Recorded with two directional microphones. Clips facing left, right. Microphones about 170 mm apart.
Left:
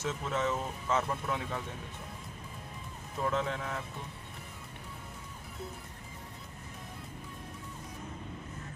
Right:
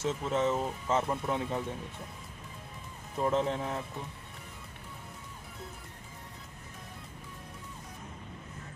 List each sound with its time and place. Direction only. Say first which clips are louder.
0.0 s speech: right 3 dB; 25° right (ahead or behind)
3.3 s speech: right 4 dB; 30° right (ahead or behind)